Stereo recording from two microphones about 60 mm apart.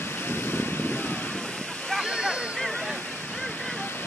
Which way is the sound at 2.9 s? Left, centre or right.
Left.